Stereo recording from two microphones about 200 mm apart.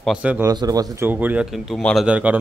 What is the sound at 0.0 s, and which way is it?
Speech, 5° right (ahead or behind).